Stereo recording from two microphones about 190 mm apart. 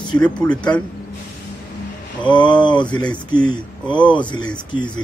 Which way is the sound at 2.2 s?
25° left (ahead or behind).